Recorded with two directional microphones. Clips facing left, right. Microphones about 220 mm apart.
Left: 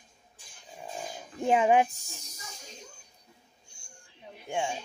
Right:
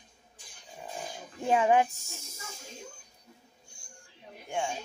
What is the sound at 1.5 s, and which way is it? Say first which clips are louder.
Speech: left 1 dB; 20° left (ahead or behind).